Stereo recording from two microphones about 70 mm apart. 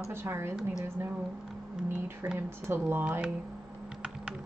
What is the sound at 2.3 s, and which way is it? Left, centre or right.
Speech, right.